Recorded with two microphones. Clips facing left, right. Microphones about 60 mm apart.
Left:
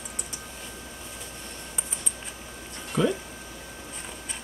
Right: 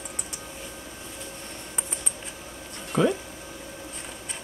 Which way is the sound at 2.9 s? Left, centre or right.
Centre.